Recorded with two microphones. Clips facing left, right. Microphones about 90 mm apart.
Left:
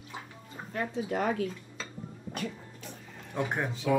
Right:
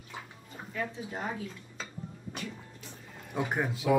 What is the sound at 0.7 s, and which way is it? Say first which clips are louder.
Speech: left 5 dB; 65° left (ahead or behind).